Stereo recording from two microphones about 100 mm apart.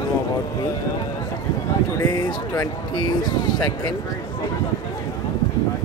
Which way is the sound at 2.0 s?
40° left (ahead or behind).